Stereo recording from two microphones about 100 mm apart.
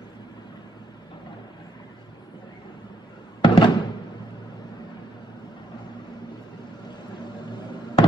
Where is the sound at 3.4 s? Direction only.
60° left (ahead or behind).